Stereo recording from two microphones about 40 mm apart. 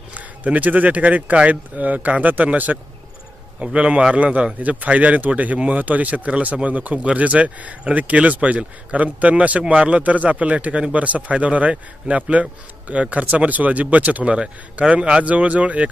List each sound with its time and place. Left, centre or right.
0.1 s speech: right
3.6 s a man's voice: right
12.3 s a man's voice: right
15.2 s speech: right